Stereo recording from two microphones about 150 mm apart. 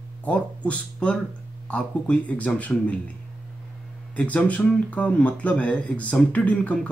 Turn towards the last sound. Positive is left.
turn(degrees=10)  # may be behind; listen again after turning